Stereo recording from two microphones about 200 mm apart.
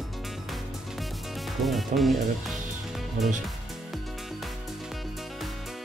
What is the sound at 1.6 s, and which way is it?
Speech, centre (ahead or behind).